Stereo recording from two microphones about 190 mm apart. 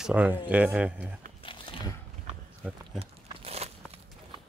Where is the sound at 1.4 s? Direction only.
25° left (ahead or behind).